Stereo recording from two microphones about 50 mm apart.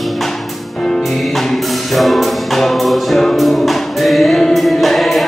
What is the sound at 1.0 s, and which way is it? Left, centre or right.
Music, centre.